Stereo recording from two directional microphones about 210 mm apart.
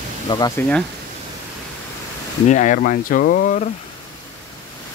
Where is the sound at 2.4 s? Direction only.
35° left (ahead or behind).